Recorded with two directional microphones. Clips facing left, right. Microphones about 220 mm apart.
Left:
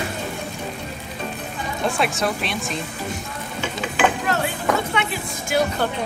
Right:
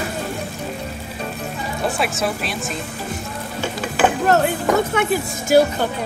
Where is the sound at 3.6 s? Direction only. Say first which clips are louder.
Right 2 dB; 45° right (ahead or behind).